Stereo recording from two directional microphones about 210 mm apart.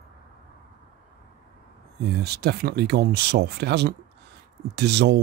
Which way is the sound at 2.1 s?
50° right (ahead or behind).